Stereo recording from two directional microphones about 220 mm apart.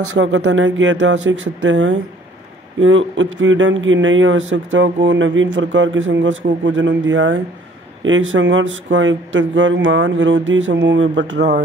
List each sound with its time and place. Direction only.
0.2 s speech: 55° right (ahead or behind)